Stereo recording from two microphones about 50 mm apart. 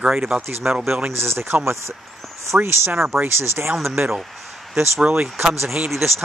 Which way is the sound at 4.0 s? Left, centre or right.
Right.